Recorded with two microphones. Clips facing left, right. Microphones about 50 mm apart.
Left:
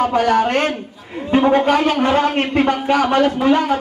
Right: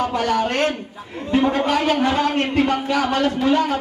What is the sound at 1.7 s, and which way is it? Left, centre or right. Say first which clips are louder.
Speech: left 3 dB; centre.